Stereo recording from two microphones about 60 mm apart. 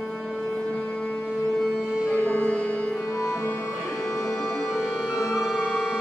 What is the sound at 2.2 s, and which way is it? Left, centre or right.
Music, left.